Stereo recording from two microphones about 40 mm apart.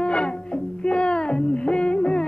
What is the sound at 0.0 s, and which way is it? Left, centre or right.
Music, left.